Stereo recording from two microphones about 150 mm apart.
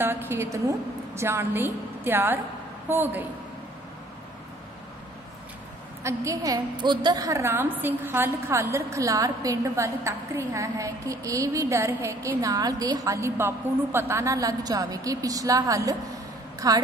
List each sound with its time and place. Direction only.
0.0 s a woman's voice: 15° right (ahead or behind)
6.0 s a woman's voice: 20° right (ahead or behind)